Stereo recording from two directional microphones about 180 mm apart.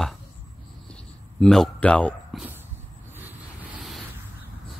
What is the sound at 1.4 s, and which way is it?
Speech, 5° left (ahead or behind).